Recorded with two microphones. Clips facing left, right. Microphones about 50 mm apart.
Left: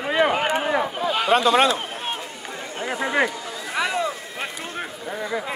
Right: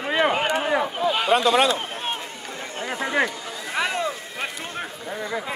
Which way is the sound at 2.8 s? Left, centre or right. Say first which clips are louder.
Left 1 dB; centre.